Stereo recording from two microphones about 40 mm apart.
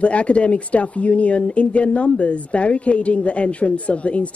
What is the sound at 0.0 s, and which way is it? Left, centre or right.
Speech, left.